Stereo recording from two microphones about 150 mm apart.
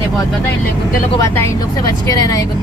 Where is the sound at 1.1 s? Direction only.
20° left (ahead or behind).